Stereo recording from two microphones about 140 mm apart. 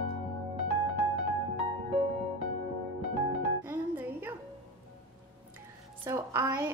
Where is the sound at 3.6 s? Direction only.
15° right (ahead or behind).